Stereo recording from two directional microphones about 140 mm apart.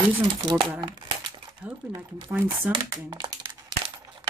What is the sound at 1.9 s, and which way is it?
Speech, 30° right (ahead or behind).